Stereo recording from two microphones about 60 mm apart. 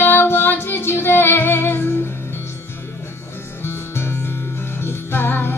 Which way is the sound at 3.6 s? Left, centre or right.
Left.